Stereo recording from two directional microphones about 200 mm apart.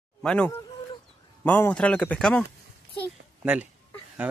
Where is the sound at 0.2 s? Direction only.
5° left (ahead or behind).